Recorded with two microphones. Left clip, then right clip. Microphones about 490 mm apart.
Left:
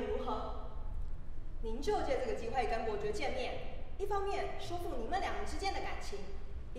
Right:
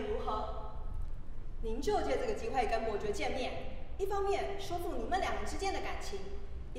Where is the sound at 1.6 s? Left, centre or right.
Right.